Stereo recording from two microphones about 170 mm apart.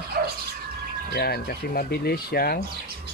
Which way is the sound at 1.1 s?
65° left (ahead or behind).